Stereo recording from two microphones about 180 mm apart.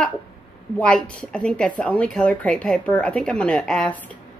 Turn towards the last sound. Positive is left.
turn(degrees=5)  # may be behind; listen again after turning